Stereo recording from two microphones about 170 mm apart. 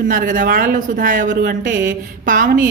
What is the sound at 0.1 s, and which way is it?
A woman's voice, 55° right (ahead or behind).